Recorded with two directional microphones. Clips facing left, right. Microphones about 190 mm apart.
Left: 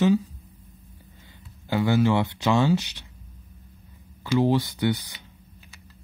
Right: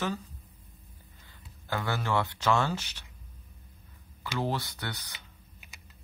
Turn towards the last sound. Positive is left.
turn(degrees=15)  # may be behind; listen again after turning